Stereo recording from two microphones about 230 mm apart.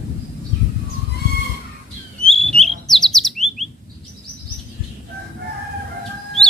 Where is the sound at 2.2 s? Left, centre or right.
Centre.